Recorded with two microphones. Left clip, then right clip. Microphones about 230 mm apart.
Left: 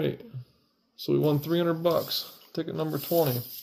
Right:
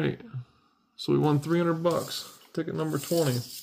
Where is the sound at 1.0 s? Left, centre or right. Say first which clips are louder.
Even; right.